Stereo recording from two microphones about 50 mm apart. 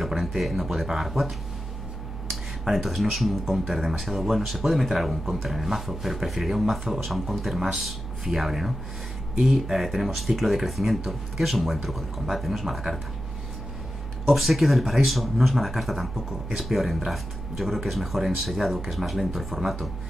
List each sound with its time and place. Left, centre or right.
0.0 s a sound: centre
0.4 s speech: centre
14.2 s speech: centre